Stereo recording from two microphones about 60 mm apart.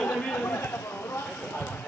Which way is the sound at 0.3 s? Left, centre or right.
Left.